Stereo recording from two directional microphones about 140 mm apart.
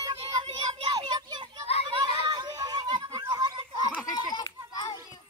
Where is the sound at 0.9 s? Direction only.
30° right (ahead or behind).